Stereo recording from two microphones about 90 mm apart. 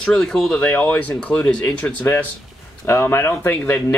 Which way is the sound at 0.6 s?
20° left (ahead or behind).